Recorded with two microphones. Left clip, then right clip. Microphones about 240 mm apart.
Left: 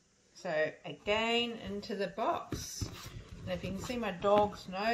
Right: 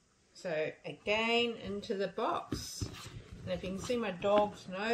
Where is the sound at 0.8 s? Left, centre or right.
Centre.